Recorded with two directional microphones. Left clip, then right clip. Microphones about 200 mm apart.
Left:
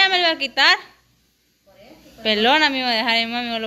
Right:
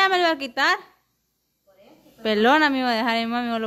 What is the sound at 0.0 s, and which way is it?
Speech, 40° right (ahead or behind).